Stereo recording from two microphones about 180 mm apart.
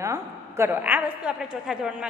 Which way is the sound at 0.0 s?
15° right (ahead or behind).